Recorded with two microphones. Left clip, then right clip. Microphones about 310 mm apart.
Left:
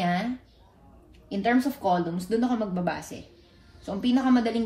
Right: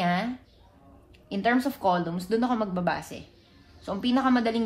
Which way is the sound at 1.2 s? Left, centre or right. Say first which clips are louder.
Even; centre.